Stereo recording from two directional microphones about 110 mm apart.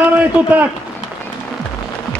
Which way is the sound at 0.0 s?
15° right (ahead or behind).